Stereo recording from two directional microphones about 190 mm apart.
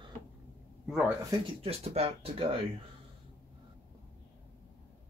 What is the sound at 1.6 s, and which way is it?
Speech, 30° right (ahead or behind).